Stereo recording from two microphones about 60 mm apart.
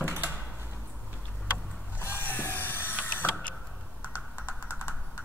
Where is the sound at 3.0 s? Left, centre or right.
Left.